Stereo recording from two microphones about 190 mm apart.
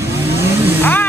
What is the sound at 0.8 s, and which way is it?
Vehicle, 10° left (ahead or behind).